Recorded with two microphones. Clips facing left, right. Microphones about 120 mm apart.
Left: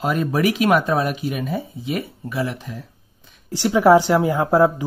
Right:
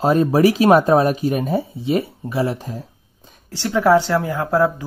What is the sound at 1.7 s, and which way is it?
Speech, 30° right (ahead or behind).